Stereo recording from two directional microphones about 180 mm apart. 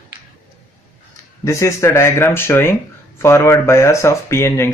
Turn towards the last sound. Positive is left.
turn(degrees=15)  # may be behind; listen again after turning